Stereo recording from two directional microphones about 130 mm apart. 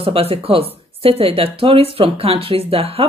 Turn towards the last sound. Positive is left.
turn(degrees=-50)  # may be behind; listen again after turning